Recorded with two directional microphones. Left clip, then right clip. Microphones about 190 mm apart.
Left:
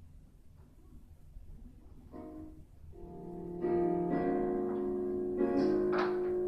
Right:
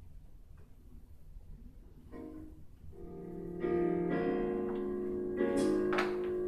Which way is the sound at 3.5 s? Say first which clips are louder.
Left 1 dB; 25° right (ahead or behind).